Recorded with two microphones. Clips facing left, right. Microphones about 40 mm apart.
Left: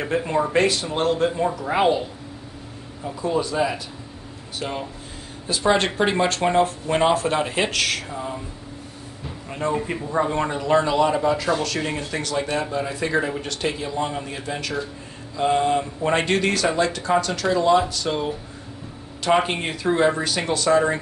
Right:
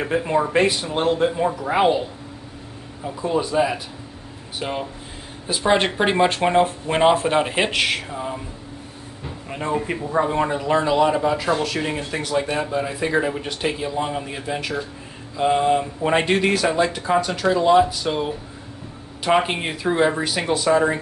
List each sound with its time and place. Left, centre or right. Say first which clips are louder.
0.0 s speech: right 2 dB; centre
5.9 s speech: right 2 dB; centre
9.5 s speech: even; centre